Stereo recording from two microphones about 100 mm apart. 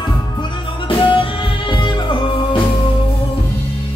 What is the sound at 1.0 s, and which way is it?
Music, 60° left (ahead or behind).